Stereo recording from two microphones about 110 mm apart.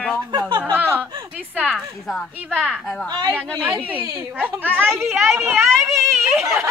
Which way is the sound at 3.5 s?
15° right (ahead or behind).